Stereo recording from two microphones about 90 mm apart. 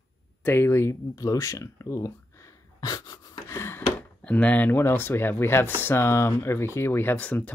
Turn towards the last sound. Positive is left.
turn(degrees=20)  # may be behind; listen again after turning